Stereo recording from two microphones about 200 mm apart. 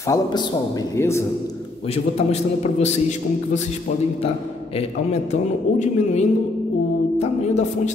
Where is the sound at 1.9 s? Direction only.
30° left (ahead or behind).